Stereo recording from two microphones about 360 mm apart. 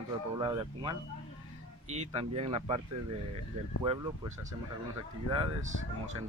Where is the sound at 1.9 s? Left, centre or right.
Centre.